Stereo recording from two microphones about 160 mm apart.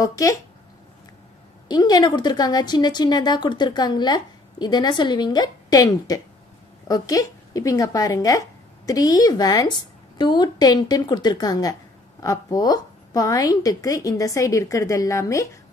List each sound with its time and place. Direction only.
0.0 s speech: 20° left (ahead or behind)
1.7 s speech: 25° left (ahead or behind)